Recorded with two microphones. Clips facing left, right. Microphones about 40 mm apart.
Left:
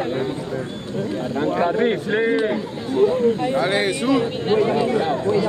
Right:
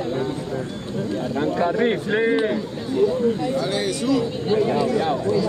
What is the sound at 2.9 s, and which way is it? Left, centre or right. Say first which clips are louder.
A man's voice: left 2 dB; left.